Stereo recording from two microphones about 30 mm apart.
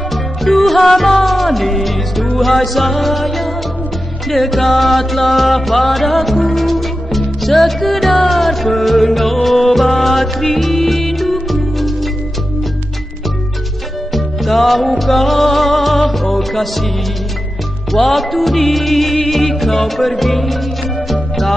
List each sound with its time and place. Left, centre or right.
0.1 s music: centre
14.1 s music: centre
17.9 s music: centre